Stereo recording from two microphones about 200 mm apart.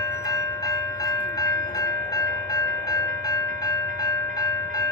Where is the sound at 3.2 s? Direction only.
20° left (ahead or behind).